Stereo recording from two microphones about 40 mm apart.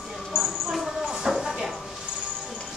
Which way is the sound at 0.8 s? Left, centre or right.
Centre.